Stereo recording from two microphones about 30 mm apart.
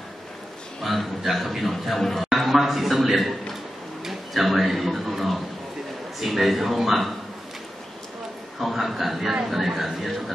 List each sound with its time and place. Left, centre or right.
0.8 s a man's voice: centre
2.2 s a sound: centre
6.2 s a man's voice: centre
8.5 s a man's voice: centre
10.0 s a man's voice: centre